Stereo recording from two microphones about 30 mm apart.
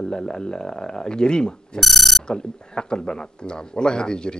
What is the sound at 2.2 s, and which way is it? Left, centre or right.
A man's voice, left.